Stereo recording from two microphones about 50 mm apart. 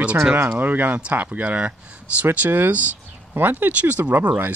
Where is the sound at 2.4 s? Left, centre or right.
Right.